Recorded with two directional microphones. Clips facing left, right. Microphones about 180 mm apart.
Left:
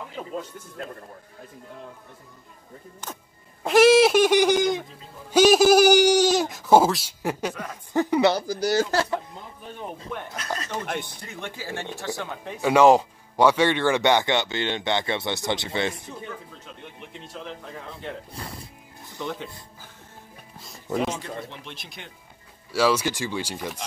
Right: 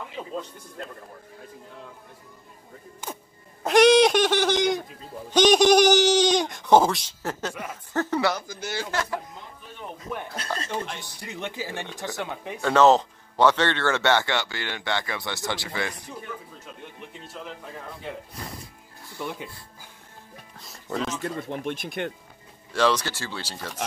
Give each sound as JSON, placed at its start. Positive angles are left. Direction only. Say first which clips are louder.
{"t": 3.6, "sound": "speech", "louder": "left 1 dB", "side_deg": 5}
{"t": 8.3, "sound": "speech", "louder": "left 7 dB", "side_deg": 35}
{"t": 10.9, "sound": "speech", "louder": "left 7 dB", "side_deg": 55}
{"t": 11.1, "sound": "speech", "louder": "right 3 dB", "side_deg": -20}
{"t": 12.5, "sound": "speech", "louder": "left 2 dB", "side_deg": 10}
{"t": 17.3, "sound": "speech", "louder": "left 2 dB", "side_deg": -5}
{"t": 19.1, "sound": "speech", "louder": "left 1 dB", "side_deg": -10}
{"t": 20.5, "sound": "music", "louder": "left 3 dB", "side_deg": 5}
{"t": 21.2, "sound": "speech", "louder": "right 5 dB", "side_deg": -50}
{"t": 22.7, "sound": "speech", "louder": "left 1 dB", "side_deg": 10}